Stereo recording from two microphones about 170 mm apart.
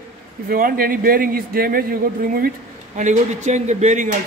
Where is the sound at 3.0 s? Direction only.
45° right (ahead or behind).